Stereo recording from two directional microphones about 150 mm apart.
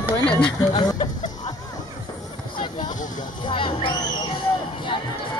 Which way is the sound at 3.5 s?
35° left (ahead or behind).